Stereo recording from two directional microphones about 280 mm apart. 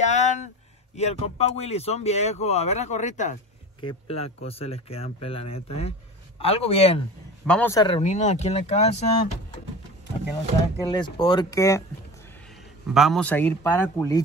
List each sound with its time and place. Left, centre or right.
0.0 s a sound: left
0.9 s speech: left
7.4 s speech: centre; by 9.4 s left
10.9 s speech: centre
12.8 s speech: centre